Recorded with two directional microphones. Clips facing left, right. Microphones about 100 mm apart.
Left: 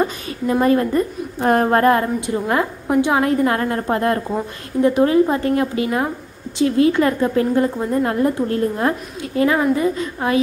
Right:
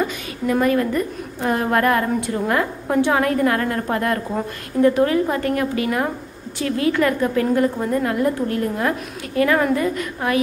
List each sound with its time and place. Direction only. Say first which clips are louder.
0.0 s a sound: left 2 dB; 30° left (ahead or behind)
1.7 s a woman's voice: left 3 dB; 30° left (ahead or behind)
2.2 s a woman's voice: left 1 dB; 20° left (ahead or behind)